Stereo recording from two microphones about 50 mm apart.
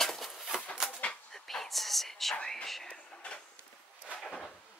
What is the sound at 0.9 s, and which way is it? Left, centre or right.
Bird, left.